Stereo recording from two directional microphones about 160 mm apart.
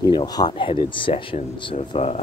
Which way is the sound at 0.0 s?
25° left (ahead or behind).